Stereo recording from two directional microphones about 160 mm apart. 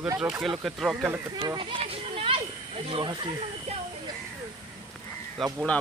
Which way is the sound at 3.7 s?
40° right (ahead or behind).